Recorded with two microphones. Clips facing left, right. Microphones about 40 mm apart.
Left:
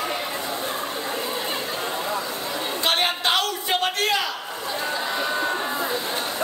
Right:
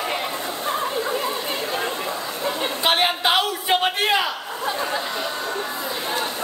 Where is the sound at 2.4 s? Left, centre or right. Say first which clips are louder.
Right 7 dB; centre.